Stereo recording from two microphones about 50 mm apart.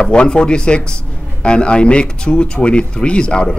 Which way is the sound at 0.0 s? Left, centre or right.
Centre.